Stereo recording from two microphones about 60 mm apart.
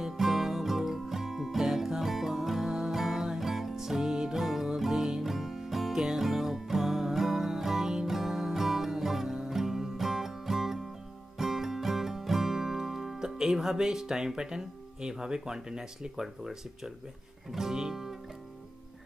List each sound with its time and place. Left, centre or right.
0.0 s music: centre